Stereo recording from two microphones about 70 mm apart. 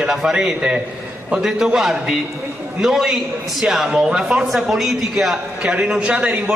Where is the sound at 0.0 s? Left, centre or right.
Centre.